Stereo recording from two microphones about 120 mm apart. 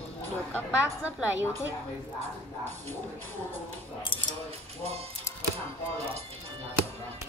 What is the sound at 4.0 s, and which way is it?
Speech, 45° left (ahead or behind).